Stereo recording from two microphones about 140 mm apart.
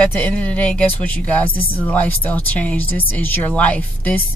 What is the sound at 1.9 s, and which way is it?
A woman's voice, 10° left (ahead or behind).